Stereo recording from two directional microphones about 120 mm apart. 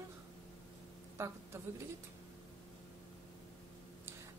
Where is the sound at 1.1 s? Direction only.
25° right (ahead or behind).